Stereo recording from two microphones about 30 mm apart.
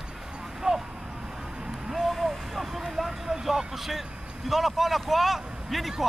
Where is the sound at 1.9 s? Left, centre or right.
Centre.